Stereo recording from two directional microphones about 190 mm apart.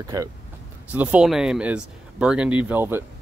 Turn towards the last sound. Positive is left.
turn(degrees=-10)  # may be behind; listen again after turning